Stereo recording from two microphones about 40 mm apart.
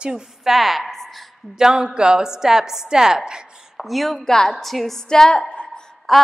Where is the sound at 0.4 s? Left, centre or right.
Centre.